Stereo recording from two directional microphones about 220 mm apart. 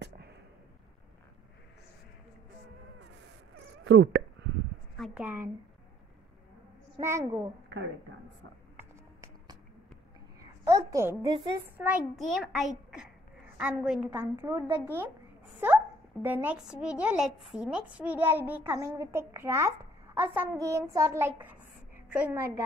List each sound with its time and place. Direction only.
0.0 s a sound: 50° right (ahead or behind)
3.8 s a sound: 60° right (ahead or behind)
4.9 s a woman's voice: centre (ahead or behind)
7.0 s speech: 15° right (ahead or behind)
8.7 s music: 15° right (ahead or behind)
10.4 s a woman's voice: 15° right (ahead or behind)
11.8 s a child's voice: 5° right (ahead or behind)